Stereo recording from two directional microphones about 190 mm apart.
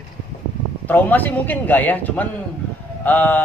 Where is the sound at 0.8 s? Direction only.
10° left (ahead or behind).